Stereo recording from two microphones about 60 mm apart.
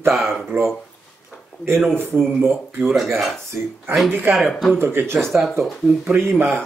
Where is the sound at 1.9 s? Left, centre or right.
Right.